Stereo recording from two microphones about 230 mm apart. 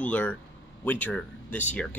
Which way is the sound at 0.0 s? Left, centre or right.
Centre.